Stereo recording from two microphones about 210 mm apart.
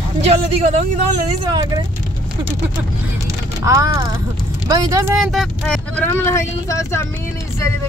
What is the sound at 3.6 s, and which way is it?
Speech, 15° right (ahead or behind).